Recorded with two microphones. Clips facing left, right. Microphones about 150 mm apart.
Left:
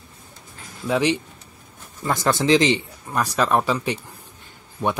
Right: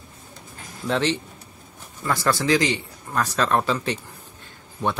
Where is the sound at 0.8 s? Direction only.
10° left (ahead or behind).